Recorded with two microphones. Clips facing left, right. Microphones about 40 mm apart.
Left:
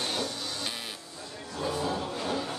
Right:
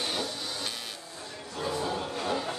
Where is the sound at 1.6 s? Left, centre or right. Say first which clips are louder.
Left 1 dB; centre.